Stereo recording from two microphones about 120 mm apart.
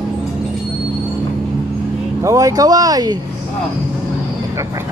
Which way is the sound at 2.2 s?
30° right (ahead or behind).